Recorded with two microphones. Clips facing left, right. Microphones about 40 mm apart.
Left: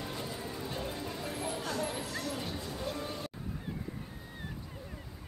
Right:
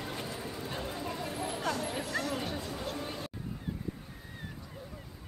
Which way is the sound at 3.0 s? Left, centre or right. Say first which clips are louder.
Even; centre.